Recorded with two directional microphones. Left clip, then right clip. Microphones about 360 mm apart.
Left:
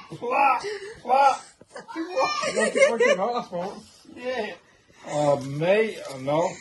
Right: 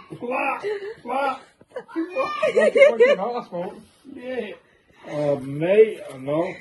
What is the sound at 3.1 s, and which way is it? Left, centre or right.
Speech, left.